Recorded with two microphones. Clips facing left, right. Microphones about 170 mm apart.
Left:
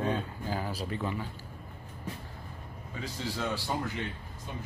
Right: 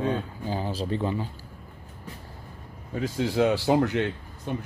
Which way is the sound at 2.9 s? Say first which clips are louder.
Right 11 dB; 55° right (ahead or behind).